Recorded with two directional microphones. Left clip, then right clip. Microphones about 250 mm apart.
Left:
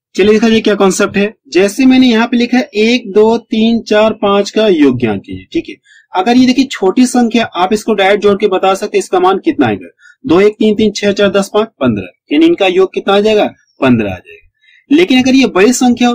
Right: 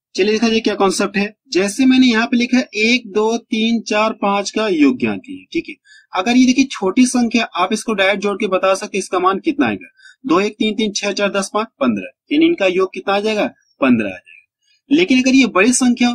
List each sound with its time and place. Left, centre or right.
0.2 s speech: centre
7.0 s speech: centre